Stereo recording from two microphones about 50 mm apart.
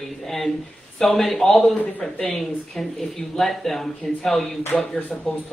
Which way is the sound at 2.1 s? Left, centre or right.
Centre.